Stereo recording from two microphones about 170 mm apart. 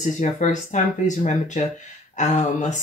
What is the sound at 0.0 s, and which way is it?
Speech, 50° left (ahead or behind).